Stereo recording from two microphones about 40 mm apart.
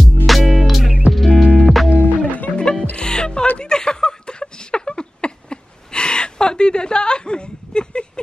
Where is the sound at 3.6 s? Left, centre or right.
Centre.